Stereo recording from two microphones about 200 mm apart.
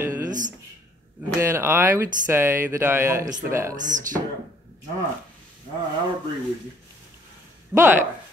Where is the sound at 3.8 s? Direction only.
40° right (ahead or behind).